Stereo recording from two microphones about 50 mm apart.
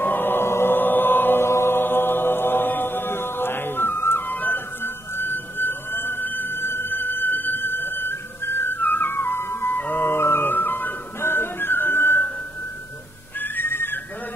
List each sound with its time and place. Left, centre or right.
0.0 s music: left
0.7 s chant: left
9.8 s music: left
11.1 s music: left
13.4 s whistling: left